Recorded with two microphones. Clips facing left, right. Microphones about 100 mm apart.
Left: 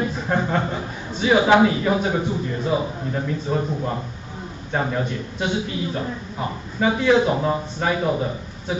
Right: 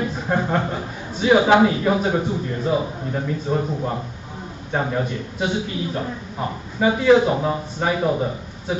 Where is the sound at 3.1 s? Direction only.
5° right (ahead or behind).